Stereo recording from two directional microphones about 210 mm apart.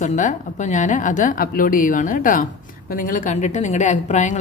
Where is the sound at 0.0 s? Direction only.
35° left (ahead or behind).